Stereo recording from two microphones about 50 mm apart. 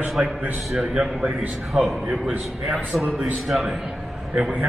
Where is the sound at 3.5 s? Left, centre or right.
Centre.